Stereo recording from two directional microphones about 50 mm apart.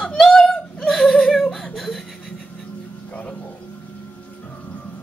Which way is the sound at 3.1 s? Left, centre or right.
Left.